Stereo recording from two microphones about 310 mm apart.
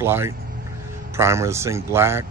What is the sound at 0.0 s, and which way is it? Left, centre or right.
Speech, centre.